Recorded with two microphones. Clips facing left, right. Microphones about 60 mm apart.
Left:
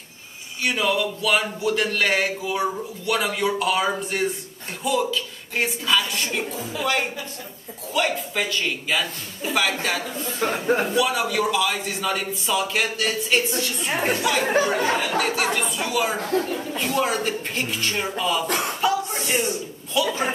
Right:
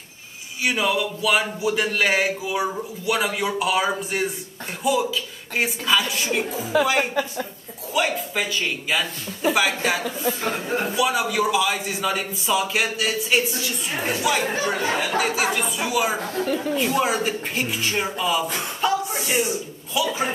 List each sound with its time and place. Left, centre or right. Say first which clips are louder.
0.6 s speech: even; centre
7.9 s speech: right 1 dB; centre
13.9 s a woman's voice: left 3 dB; left
14.2 s speech: left 1 dB; centre
18.5 s speech: left 4 dB; left
18.8 s a sound: right 4 dB; centre